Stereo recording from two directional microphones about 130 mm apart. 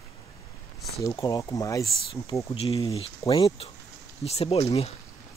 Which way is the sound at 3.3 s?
35° left (ahead or behind).